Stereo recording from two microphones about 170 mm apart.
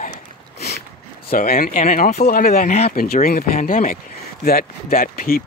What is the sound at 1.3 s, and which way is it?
Speech, 60° left (ahead or behind).